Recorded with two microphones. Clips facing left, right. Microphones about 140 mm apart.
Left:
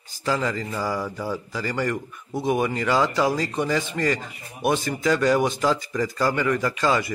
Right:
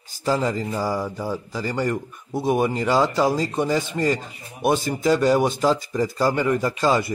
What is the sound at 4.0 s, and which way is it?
Speech, 15° right (ahead or behind).